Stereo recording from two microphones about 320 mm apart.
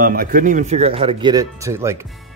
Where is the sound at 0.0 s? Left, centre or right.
Right.